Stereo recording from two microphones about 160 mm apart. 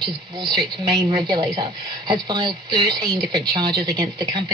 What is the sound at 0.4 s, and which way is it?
Speech, 25° right (ahead or behind).